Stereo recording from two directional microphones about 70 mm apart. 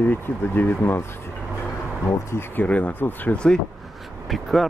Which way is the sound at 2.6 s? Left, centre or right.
Centre.